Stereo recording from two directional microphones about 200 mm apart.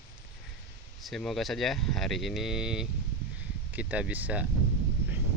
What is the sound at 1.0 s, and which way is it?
Speech, centre (ahead or behind).